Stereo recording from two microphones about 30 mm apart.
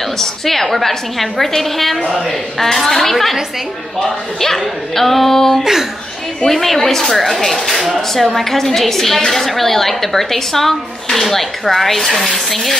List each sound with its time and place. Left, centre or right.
0.2 s a woman's voice: centre
4.9 s a woman's voice: centre
5.6 s speech: centre
6.4 s a woman's voice: centre